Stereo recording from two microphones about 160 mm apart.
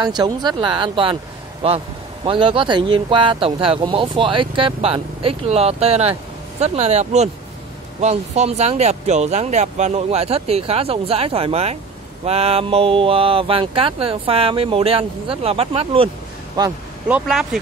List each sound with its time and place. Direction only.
0.0 s speech: 25° right (ahead or behind)
16.6 s speech: 25° right (ahead or behind)
17.1 s speech: 5° right (ahead or behind)